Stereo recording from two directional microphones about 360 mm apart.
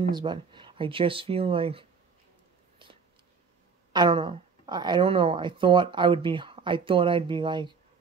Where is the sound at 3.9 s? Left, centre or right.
Centre.